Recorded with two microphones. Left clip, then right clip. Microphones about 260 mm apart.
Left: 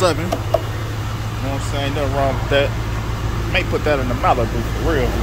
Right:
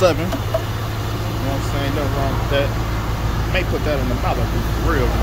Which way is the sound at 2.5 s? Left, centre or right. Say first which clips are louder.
Left 3 dB; centre.